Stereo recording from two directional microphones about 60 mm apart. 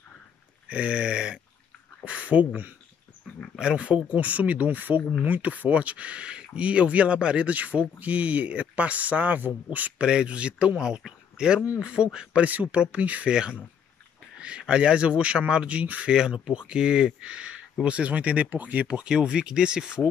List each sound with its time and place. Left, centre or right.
0.7 s a man's voice: centre
16.1 s a man's voice: centre